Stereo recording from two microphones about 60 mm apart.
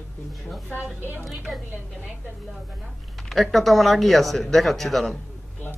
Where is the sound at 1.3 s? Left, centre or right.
Centre.